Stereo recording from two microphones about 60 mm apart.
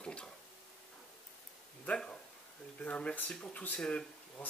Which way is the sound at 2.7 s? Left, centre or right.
Left.